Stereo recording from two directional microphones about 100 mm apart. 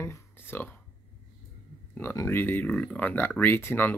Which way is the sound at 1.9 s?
25° left (ahead or behind).